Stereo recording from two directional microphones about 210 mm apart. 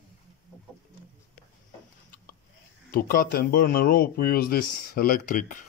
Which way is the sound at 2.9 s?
45° left (ahead or behind).